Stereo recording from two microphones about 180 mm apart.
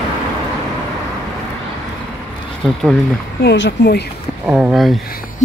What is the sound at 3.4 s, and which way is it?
Speech, 80° left.